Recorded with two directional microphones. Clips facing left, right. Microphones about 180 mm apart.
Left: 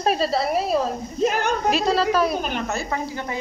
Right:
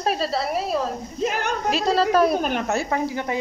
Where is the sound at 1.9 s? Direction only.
50° right (ahead or behind); by 3.3 s 75° right (ahead or behind).